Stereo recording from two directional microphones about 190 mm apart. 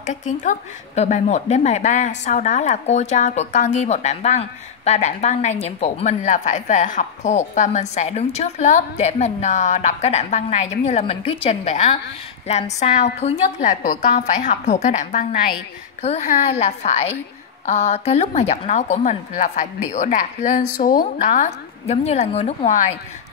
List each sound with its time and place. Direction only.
0.0 s a woman's voice: 40° left (ahead or behind)